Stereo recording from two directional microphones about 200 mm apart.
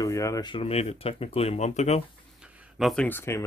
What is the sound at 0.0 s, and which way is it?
Speech, 15° left (ahead or behind).